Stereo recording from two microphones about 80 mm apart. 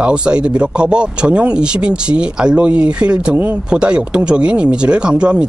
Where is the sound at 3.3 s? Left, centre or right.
Right.